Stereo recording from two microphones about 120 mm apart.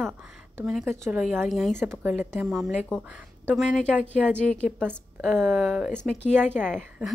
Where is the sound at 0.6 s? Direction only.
5° right (ahead or behind).